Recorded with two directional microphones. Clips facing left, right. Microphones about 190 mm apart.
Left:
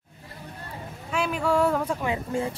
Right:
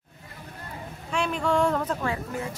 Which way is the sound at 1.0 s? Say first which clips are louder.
Left 1 dB; 5° left (ahead or behind).